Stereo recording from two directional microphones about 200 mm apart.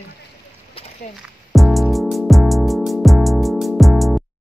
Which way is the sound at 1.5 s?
Centre (ahead or behind).